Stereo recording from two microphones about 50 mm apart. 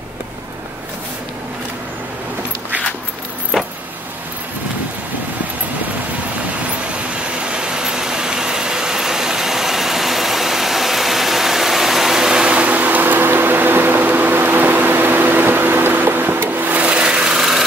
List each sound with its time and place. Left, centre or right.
3.5 s vehicle: centre
6.9 s vehicle: right
12.5 s a sound: right
16.8 s wood: right